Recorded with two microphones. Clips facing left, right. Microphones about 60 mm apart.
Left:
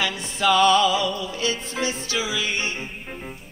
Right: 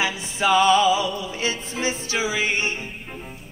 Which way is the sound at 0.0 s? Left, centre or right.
Centre.